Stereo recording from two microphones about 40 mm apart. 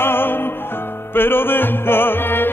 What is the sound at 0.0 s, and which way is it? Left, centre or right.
Music, left.